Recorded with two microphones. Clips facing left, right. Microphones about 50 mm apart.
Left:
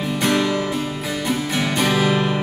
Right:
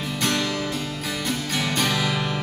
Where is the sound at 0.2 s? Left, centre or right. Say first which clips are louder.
Left 5 dB; centre.